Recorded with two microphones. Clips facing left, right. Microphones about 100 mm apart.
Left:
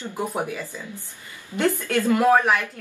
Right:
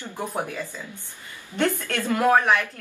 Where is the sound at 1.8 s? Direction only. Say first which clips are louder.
Left 5 dB; 5° left (ahead or behind).